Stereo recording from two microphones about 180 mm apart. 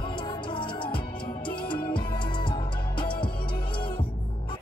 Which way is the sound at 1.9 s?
25° left (ahead or behind).